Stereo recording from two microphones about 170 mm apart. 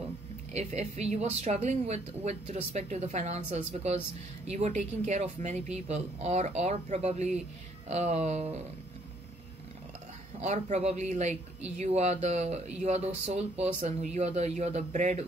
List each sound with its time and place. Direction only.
0.0 s speech: 40° right (ahead or behind)
10.4 s speech: 40° right (ahead or behind)